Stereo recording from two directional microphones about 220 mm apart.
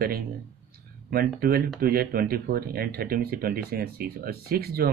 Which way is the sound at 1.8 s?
45° right (ahead or behind).